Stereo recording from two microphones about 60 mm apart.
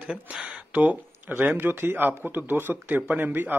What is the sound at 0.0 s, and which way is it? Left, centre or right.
Speech, centre.